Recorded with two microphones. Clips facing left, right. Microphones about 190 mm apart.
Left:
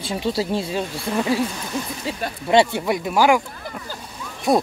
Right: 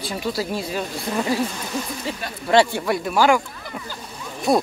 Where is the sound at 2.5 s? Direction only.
20° left (ahead or behind).